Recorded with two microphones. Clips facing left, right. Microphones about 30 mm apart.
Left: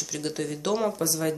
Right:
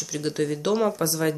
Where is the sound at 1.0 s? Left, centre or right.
Right.